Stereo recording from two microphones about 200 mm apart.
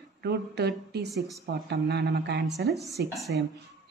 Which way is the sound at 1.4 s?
55° right (ahead or behind).